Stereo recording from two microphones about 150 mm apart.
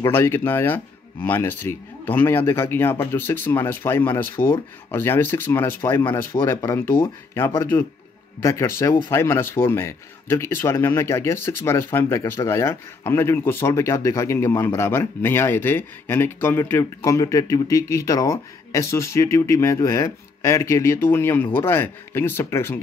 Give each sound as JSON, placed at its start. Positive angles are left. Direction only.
{"t": 0.0, "sound": "speech", "side_deg": 15}